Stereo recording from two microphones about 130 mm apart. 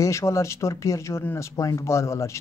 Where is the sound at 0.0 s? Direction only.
20° left (ahead or behind).